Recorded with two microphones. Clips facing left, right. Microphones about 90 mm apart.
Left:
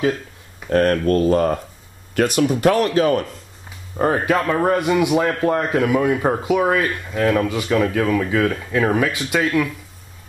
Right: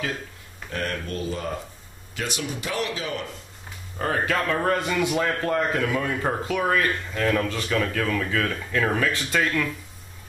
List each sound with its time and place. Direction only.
0.7 s speech: 50° left (ahead or behind)
3.9 s speech: 25° left (ahead or behind)